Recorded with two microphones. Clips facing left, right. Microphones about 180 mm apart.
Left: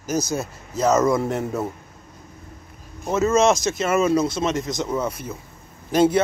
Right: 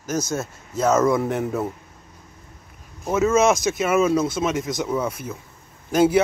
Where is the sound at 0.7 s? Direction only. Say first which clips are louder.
Even; 5° right (ahead or behind).